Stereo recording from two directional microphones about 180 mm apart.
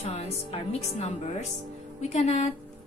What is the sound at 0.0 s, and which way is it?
A woman's voice, 35° left (ahead or behind).